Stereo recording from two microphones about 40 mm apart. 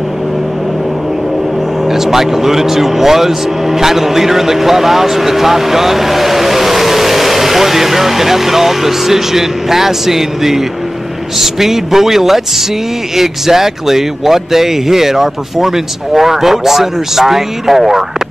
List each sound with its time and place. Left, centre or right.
1.9 s a man's voice: centre